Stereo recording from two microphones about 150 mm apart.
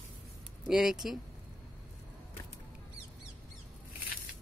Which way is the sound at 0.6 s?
5° right (ahead or behind).